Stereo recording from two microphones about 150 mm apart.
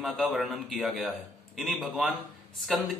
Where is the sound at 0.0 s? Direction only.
5° right (ahead or behind).